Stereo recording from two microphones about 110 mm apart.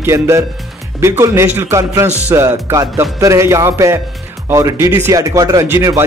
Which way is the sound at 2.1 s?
15° right (ahead or behind).